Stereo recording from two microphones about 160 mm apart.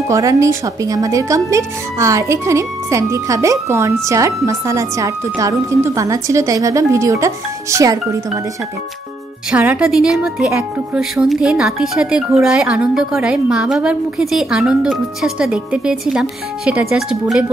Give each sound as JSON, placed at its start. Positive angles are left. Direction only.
{"t": 0.1, "sound": "speech", "side_deg": -20}
{"t": 9.5, "sound": "a woman's voice", "side_deg": -5}